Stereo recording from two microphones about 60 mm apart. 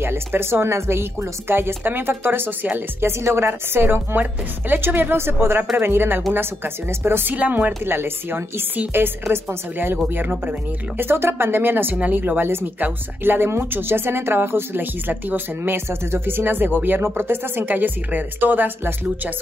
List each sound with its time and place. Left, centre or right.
0.0 s speech: right
3.1 s a woman's voice: right
7.3 s speech: right